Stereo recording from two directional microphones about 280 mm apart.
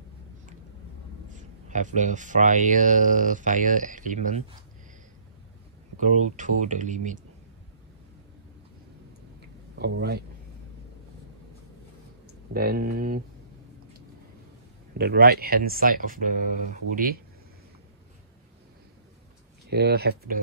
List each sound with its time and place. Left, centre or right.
1.3 s speech: right
5.9 s speech: right
9.8 s speech: right
12.5 s speech: right
15.0 s speech: right
19.7 s speech: right